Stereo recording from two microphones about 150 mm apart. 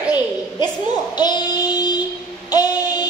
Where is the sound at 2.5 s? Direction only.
25° left (ahead or behind).